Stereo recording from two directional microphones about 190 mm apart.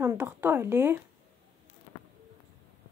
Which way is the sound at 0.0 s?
10° right (ahead or behind).